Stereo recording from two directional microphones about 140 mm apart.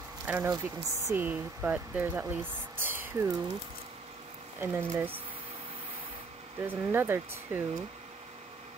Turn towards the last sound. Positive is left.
turn(degrees=-15)  # may be behind; listen again after turning